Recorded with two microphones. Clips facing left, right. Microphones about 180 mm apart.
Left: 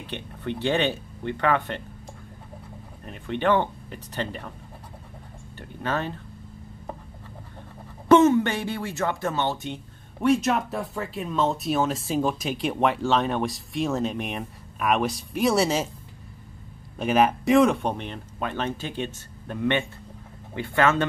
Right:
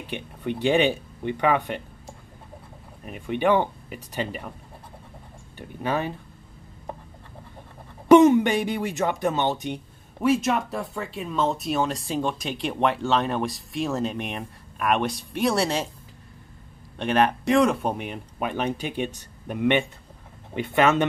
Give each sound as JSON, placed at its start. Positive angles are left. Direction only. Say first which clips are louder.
{"t": 0.0, "sound": "speech", "louder": "right 2 dB", "side_deg": -10}
{"t": 3.1, "sound": "speech", "louder": "right 1 dB", "side_deg": -10}
{"t": 5.6, "sound": "speech", "louder": "right 2 dB", "side_deg": -15}
{"t": 8.1, "sound": "speech", "louder": "right 3 dB", "side_deg": -15}
{"t": 10.2, "sound": "speech", "louder": "even", "side_deg": 0}
{"t": 17.0, "sound": "speech", "louder": "left 1 dB", "side_deg": 5}